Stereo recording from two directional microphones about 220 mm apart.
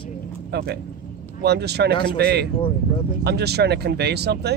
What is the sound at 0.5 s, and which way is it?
Speech, 50° right (ahead or behind).